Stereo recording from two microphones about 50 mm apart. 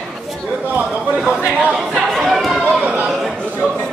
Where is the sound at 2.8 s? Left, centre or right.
Right.